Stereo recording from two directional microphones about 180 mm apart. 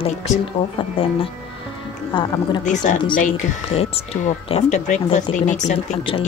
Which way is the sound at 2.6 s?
45° left (ahead or behind).